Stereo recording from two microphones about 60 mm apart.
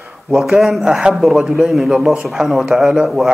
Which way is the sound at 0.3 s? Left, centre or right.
Centre.